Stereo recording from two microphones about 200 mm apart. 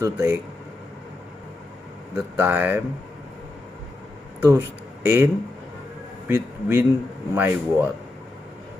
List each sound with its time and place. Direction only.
0.0 s speech: 10° right (ahead or behind)
2.3 s speech: 10° right (ahead or behind)
4.4 s speech: 10° right (ahead or behind)